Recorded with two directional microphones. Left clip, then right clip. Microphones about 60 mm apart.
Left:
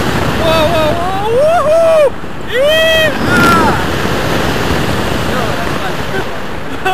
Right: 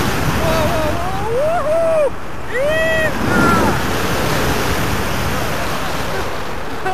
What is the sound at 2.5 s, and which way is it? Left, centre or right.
Vehicle, centre.